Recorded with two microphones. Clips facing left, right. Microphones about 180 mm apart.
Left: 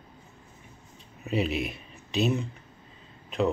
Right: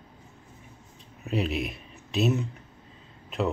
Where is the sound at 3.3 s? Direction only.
Centre (ahead or behind).